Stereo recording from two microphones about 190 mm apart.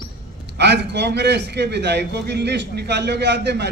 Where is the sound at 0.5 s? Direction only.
65° right (ahead or behind).